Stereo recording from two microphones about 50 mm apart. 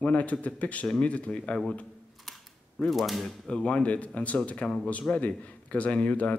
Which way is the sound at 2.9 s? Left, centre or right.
Centre.